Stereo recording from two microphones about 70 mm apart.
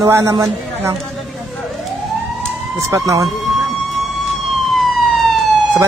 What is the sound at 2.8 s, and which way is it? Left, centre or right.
Speech, right.